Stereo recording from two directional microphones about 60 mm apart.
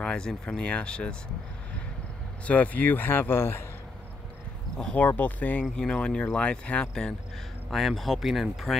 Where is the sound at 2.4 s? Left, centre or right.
Left.